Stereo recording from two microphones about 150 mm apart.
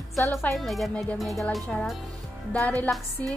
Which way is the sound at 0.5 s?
Centre (ahead or behind).